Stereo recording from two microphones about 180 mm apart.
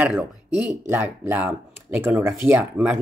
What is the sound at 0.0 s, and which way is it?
Speech, 5° right (ahead or behind).